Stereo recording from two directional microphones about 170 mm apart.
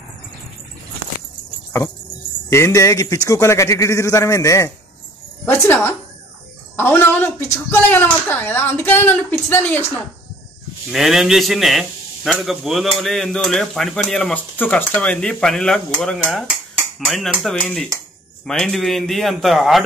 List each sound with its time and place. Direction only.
2.5 s speech: 15° left (ahead or behind)
10.9 s speech: centre (ahead or behind)